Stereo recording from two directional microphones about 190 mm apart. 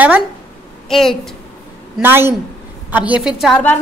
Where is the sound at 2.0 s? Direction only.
10° right (ahead or behind); by 3.8 s 5° left (ahead or behind).